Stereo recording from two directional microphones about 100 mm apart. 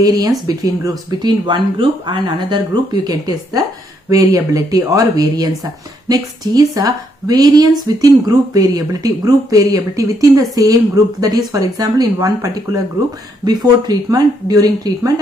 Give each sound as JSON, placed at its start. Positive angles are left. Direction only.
{"t": 0.0, "sound": "speech", "side_deg": -35}